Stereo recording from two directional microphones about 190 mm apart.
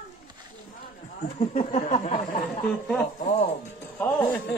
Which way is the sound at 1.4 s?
35° left (ahead or behind).